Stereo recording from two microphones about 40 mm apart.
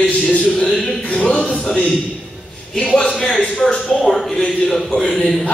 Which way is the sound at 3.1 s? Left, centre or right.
Centre.